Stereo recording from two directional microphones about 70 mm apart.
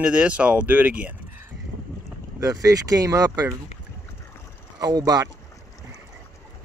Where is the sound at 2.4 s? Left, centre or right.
Right.